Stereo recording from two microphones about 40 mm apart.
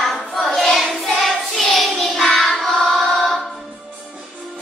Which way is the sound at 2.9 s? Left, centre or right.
Centre.